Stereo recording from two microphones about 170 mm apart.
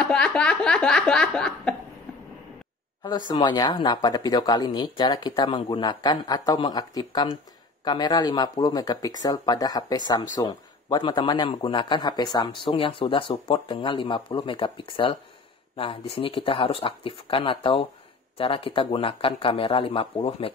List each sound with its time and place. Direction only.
0.0 s snicker: 5° left (ahead or behind)
3.0 s speech: 25° left (ahead or behind)